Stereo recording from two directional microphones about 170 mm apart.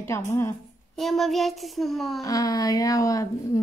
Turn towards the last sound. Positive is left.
turn(degrees=20)  # may be behind; listen again after turning